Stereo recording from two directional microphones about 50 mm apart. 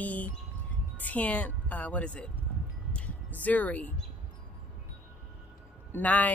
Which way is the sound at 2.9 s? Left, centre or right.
Left.